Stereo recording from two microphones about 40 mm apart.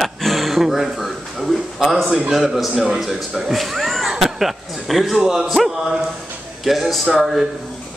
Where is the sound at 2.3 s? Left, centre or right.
Centre.